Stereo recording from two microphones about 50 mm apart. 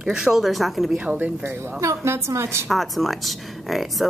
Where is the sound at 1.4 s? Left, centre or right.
Right.